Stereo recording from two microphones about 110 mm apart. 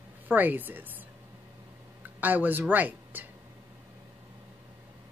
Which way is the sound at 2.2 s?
15° right (ahead or behind).